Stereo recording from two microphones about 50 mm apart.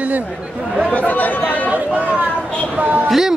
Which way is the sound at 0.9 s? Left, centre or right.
Left.